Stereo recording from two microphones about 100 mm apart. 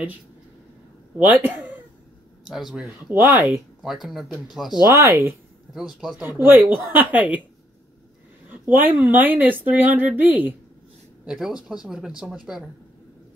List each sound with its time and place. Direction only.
1.1 s speech: 20° right (ahead or behind)
2.4 s speech: 5° right (ahead or behind)
3.1 s a woman's voice: 20° right (ahead or behind)
3.8 s speech: centre (ahead or behind)
4.8 s speech: 30° right (ahead or behind)
5.8 s speech: 5° right (ahead or behind)
6.3 s a woman's voice: 20° right (ahead or behind)
8.5 s a sound: 20° right (ahead or behind)
9.1 s a woman's voice: 20° right (ahead or behind)
11.2 s a woman's voice: 5° right (ahead or behind)